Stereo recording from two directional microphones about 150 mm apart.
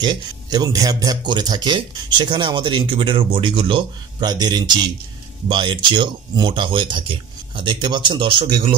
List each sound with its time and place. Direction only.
0.0 s speech: 30° right (ahead or behind)